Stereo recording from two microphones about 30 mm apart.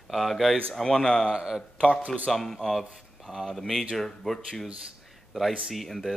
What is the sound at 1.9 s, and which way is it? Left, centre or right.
Speech, left.